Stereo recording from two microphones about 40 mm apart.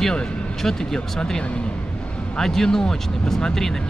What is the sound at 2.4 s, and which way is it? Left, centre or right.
Speech, centre.